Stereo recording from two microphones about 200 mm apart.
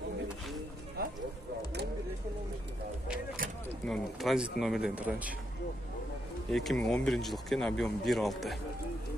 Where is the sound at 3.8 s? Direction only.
Centre (ahead or behind).